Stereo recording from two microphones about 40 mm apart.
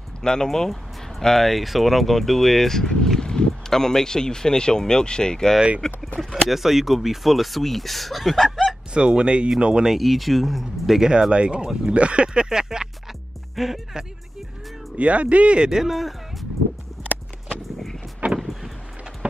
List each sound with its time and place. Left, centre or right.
0.2 s speech: centre
6.1 s speech: centre
8.9 s speech: right
9.8 s speech: centre
11.0 s speech: centre
15.0 s speech: right
15.7 s speech: centre
18.4 s vehicle: centre